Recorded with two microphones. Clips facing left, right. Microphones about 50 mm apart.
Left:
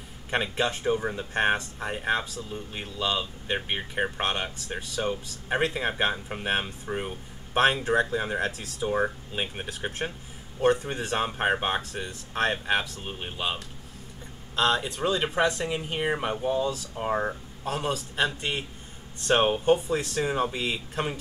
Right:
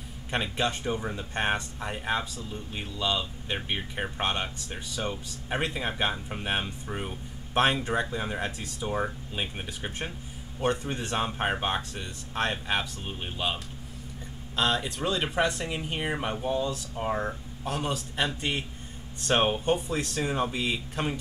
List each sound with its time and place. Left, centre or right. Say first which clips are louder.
0.3 s speech: left 2 dB; centre
9.8 s speech: left 4 dB; left
10.9 s speech: left 2 dB; centre
14.9 s speech: left 2 dB; centre